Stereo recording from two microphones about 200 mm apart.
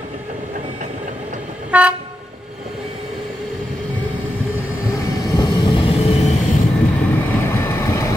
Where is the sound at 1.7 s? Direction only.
5° right (ahead or behind).